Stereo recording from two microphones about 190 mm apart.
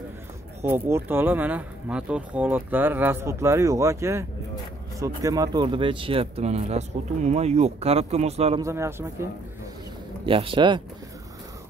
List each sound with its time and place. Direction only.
0.7 s speech: 10° right (ahead or behind); by 8.5 s 35° right (ahead or behind)
8.5 s speech: 15° right (ahead or behind)
10.2 s speech: 25° right (ahead or behind)